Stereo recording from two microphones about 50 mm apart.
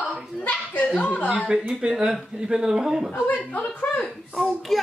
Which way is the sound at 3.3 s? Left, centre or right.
Left.